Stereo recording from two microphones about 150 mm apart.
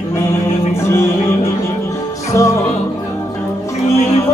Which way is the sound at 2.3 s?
20° left (ahead or behind).